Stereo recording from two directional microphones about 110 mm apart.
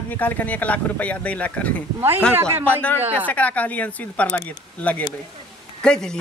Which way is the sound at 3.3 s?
15° left (ahead or behind).